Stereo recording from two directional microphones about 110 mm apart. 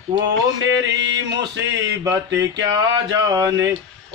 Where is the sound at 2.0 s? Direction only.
30° right (ahead or behind).